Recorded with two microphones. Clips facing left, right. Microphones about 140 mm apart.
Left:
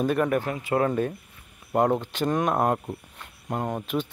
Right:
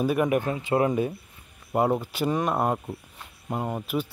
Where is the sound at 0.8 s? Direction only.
10° right (ahead or behind).